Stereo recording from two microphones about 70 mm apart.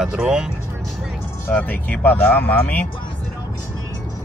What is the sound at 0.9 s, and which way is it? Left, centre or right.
Music, centre.